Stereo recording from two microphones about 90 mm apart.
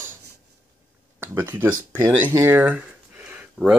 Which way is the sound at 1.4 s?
25° right (ahead or behind).